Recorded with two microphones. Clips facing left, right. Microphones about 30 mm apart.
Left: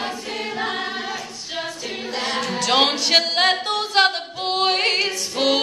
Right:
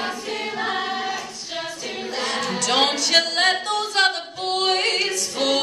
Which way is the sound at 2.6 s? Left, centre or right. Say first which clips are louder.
Left 2 dB; centre.